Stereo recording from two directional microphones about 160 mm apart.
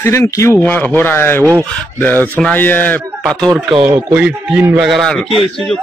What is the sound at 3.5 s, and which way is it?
Speech, 30° right (ahead or behind).